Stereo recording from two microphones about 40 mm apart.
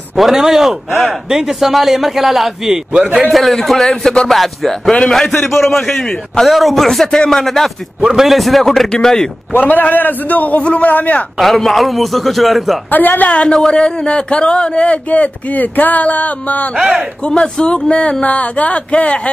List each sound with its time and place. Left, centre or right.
0.1 s a man's voice: centre
3.3 s a man's voice: centre
4.3 s a man's voice: centre
8.0 s speech: centre
8.3 s a man's voice: centre
9.0 s speech: centre
9.5 s a man's voice: left
10.6 s speech: left
11.3 s a man's voice: centre
12.9 s a man's voice: left
13.5 s a man's voice: centre
13.7 s speech: left
17.3 s a man's voice: left
18.2 s speech: left